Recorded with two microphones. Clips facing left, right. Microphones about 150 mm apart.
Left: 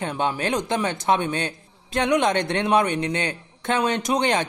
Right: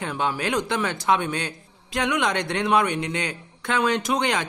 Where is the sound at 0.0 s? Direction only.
25° left (ahead or behind).